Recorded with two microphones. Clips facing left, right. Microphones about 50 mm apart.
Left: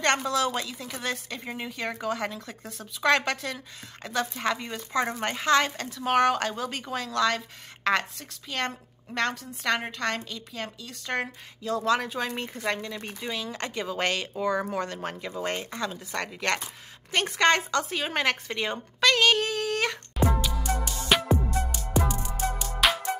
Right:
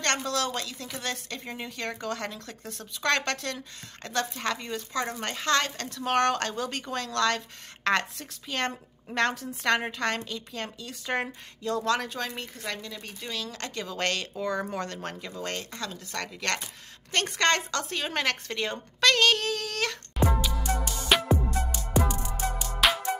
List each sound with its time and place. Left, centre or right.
0.0 s a woman's voice: centre
12.4 s a woman's voice: left
20.2 s music: centre